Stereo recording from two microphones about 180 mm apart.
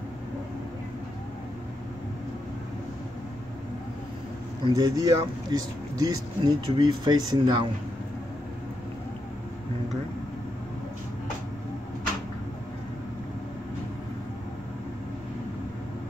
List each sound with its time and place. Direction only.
4.6 s speech: 20° right (ahead or behind)